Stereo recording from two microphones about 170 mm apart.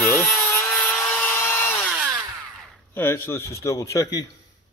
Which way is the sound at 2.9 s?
15° left (ahead or behind).